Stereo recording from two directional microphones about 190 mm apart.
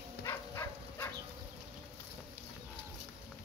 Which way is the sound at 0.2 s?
15° left (ahead or behind).